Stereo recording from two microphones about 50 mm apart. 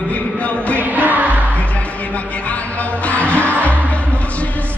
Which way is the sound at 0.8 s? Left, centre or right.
Right.